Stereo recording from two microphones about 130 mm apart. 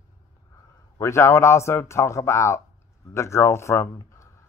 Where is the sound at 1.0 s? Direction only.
20° left (ahead or behind).